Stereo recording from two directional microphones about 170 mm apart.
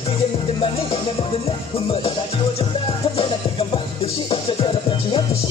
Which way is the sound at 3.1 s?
30° left (ahead or behind).